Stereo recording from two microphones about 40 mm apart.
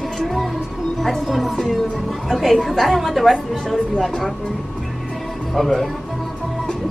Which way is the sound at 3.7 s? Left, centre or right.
Centre.